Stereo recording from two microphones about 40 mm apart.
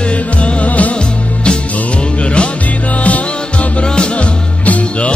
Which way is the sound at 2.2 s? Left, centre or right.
Left.